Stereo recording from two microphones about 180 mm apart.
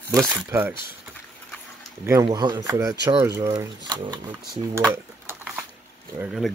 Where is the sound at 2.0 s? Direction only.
20° right (ahead or behind).